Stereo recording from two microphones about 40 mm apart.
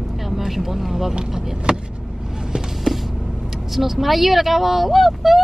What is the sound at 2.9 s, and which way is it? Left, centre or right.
Power windows, centre.